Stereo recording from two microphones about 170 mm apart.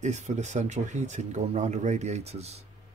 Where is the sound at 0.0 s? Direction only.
45° right (ahead or behind).